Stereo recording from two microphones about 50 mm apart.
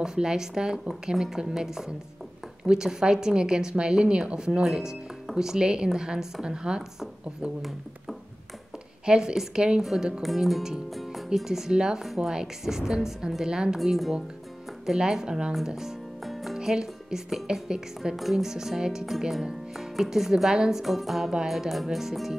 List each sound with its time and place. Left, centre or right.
0.0 s a woman's voice: centre
9.0 s a woman's voice: centre
10.9 s music: centre
11.2 s a woman's voice: centre
13.7 s a woman's voice: centre
15.5 s music: centre
16.5 s a woman's voice: centre
18.1 s a woman's voice: centre